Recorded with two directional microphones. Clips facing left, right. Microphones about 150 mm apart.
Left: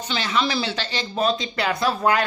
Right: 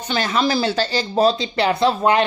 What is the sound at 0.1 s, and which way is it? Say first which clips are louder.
Speech: right 4 dB; 45° right (ahead or behind).